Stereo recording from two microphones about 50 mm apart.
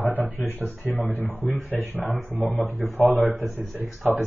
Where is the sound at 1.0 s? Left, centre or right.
Right.